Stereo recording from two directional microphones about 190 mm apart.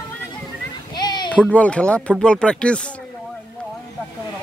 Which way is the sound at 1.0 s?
20° left (ahead or behind).